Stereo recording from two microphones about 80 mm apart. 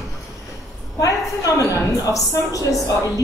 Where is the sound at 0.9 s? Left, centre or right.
Left.